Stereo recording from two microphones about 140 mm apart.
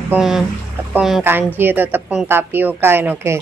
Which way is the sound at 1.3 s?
15° right (ahead or behind).